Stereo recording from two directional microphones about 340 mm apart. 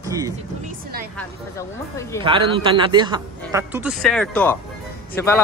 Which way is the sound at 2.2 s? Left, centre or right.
Centre.